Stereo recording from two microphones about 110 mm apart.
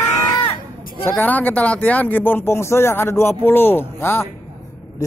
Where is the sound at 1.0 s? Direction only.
15° left (ahead or behind).